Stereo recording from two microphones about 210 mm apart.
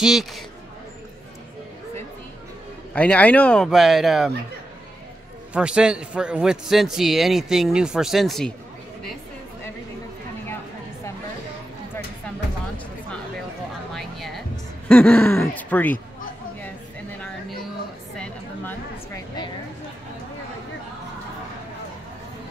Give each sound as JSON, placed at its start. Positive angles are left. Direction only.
{"t": 0.0, "sound": "a man's voice", "side_deg": 0}
{"t": 2.9, "sound": "a man's voice", "side_deg": 5}
{"t": 5.5, "sound": "a man's voice", "side_deg": -5}
{"t": 13.9, "sound": "music", "side_deg": 0}
{"t": 14.9, "sound": "speech", "side_deg": 10}
{"t": 18.1, "sound": "a sound", "side_deg": 5}
{"t": 19.1, "sound": "a sound", "side_deg": 20}